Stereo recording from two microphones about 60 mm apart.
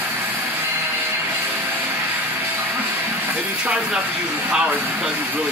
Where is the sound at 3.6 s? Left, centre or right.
Centre.